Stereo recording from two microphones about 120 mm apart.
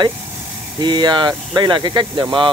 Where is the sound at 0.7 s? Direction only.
40° right (ahead or behind).